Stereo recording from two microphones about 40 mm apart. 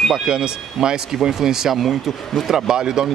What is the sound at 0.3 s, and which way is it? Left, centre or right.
Speech, right.